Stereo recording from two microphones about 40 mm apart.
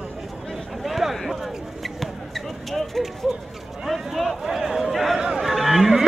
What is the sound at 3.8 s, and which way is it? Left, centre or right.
Speech, centre.